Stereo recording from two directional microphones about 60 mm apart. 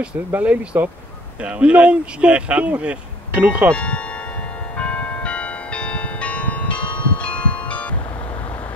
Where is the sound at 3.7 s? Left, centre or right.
Left.